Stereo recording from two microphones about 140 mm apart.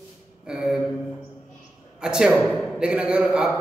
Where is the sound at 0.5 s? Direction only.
5° right (ahead or behind).